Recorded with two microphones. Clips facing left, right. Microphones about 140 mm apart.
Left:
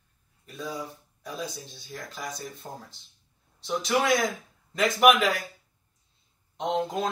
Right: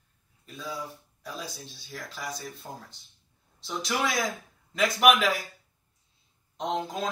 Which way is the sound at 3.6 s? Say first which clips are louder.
Left 5 dB; centre (ahead or behind).